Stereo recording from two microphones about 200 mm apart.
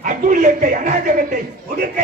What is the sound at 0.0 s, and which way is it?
A man's voice, 40° right (ahead or behind).